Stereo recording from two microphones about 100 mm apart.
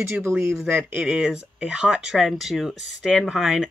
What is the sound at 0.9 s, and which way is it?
Speech, 10° right (ahead or behind).